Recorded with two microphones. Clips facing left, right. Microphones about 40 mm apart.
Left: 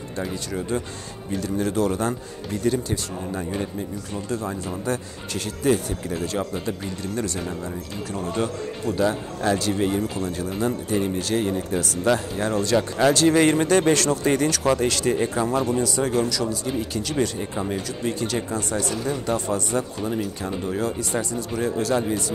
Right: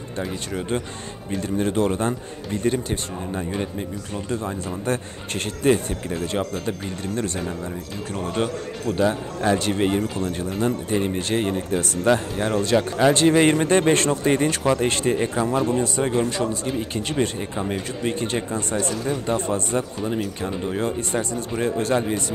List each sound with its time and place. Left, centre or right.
0.6 s speech: right
4.8 s speech: right
8.1 s speech: right
9.0 s speech: centre
9.7 s speech: right
12.0 s speech: right
12.7 s speech: centre
13.3 s speech: right
15.1 s speech: centre
15.8 s speech: right
18.0 s speech: right